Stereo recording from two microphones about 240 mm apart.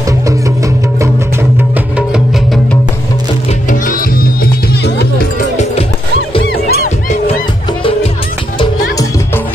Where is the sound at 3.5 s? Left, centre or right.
Left.